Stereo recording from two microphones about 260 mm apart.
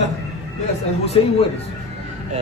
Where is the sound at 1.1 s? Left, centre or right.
Left.